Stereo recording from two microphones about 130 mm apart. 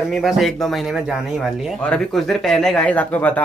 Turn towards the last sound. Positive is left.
turn(degrees=10)  # may be behind; listen again after turning